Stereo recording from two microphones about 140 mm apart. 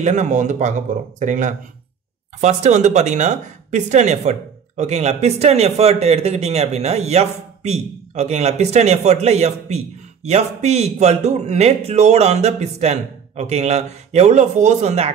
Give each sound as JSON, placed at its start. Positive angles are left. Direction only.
{"t": 0.0, "sound": "speech", "side_deg": -55}